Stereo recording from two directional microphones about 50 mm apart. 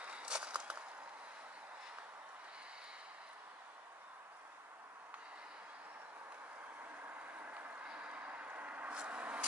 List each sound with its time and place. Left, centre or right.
0.0 s walk: right
6.8 s vehicle: right
7.8 s vehicle: right